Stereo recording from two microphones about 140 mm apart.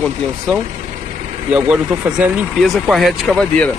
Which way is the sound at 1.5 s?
10° right (ahead or behind).